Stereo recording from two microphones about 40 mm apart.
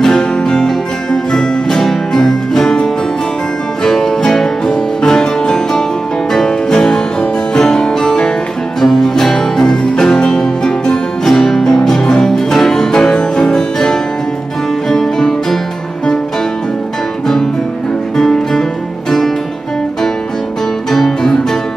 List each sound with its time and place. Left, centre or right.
0.0 s music: centre
18.1 s music: centre
20.9 s music: centre